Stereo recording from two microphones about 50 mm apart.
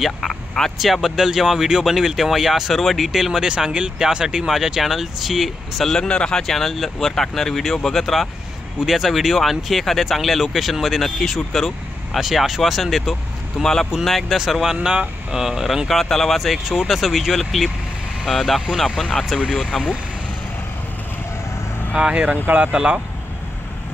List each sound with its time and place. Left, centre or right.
0.0 s speech: centre
0.7 s speech: centre
5.9 s speech: centre
6.4 s speech: centre
15.9 s speech: centre
21.9 s speech: centre